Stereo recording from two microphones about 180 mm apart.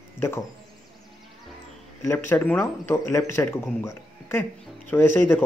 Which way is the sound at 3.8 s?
15° left (ahead or behind).